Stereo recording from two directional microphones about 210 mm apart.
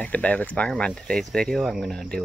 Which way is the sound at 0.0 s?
5° left (ahead or behind).